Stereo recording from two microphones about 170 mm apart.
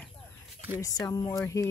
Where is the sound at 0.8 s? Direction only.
20° left (ahead or behind).